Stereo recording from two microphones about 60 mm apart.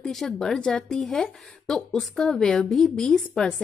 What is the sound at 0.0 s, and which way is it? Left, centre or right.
Speech, centre.